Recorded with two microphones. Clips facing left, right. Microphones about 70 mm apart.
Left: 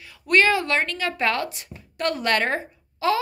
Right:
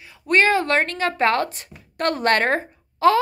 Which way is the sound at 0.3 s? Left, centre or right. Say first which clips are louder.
Right 2 dB; right.